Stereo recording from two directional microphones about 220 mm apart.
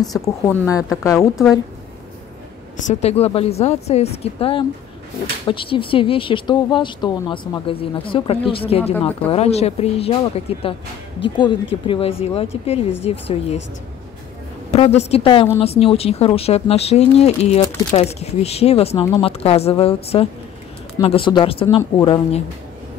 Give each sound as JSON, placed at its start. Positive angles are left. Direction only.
{"t": 0.2, "sound": "speech", "side_deg": 10}
{"t": 2.9, "sound": "speech", "side_deg": 30}
{"t": 14.7, "sound": "speech", "side_deg": 30}